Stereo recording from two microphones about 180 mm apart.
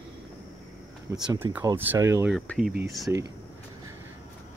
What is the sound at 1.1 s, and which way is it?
Speech, 15° right (ahead or behind).